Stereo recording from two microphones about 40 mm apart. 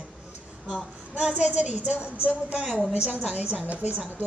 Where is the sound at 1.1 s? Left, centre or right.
Right.